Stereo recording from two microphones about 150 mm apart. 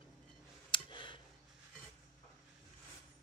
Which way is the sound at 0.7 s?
35° left (ahead or behind).